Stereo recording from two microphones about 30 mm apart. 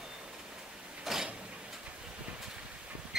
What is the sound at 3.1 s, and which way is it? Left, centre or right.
Duck, centre.